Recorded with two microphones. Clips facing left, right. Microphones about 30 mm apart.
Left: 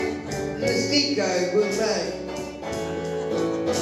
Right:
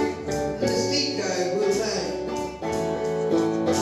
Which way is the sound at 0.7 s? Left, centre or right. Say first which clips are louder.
Left 4 dB; centre.